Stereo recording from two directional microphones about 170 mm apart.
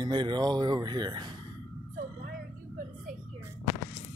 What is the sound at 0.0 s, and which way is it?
Speech, 25° right (ahead or behind).